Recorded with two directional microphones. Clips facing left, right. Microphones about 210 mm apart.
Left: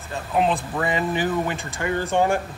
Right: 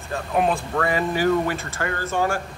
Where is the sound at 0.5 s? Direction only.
15° left (ahead or behind).